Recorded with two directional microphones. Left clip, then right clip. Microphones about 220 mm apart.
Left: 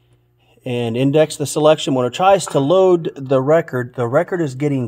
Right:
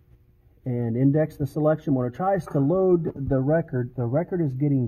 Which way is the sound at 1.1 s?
35° left (ahead or behind).